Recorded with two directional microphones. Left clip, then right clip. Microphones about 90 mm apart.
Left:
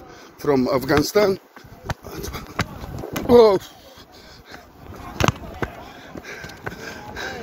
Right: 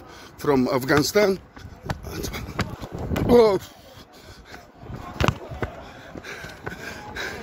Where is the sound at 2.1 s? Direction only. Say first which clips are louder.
Even; 45° right (ahead or behind).